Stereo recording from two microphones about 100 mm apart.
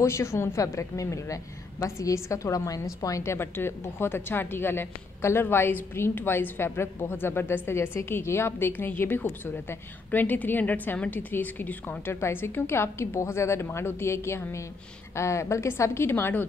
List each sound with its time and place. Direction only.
0.0 s a woman's voice: 30° left (ahead or behind)